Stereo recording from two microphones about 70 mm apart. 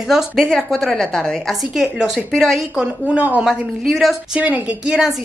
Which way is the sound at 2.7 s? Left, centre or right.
Centre.